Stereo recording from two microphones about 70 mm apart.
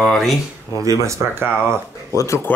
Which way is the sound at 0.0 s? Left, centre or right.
Centre.